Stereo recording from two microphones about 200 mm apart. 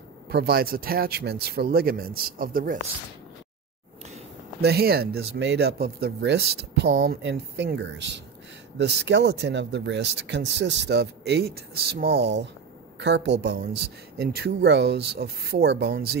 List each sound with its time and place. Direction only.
0.3 s speech: 50° right (ahead or behind)
4.6 s speech: 50° right (ahead or behind)